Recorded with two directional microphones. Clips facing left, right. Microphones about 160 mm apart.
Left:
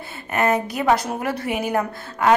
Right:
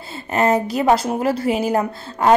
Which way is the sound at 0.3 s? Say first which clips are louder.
Right 3 dB; 25° right (ahead or behind).